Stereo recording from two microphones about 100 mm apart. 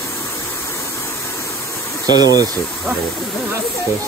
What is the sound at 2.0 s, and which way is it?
Speech, 40° right (ahead or behind).